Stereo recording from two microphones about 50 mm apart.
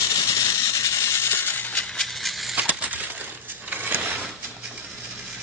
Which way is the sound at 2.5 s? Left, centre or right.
Right.